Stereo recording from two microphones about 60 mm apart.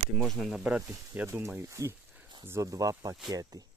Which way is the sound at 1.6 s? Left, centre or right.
Right.